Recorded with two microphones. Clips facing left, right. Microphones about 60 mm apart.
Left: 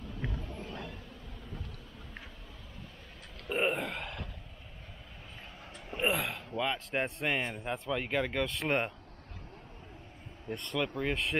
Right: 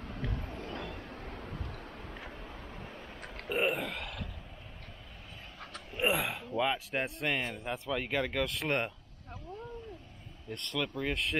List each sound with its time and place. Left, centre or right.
0.3 s a sound: right
0.8 s vehicle: right
3.4 s burping: centre
5.9 s speech: centre
10.5 s speech: centre